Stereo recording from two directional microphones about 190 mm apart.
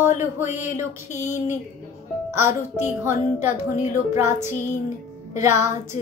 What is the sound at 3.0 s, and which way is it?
Music, 10° right (ahead or behind).